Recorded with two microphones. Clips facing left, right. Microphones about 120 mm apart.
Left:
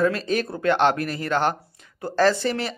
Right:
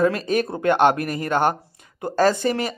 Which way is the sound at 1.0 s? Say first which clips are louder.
Right 2 dB; 50° right (ahead or behind).